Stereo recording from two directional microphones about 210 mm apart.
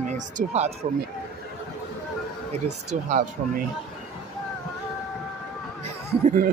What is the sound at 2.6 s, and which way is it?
Speech, 35° right (ahead or behind).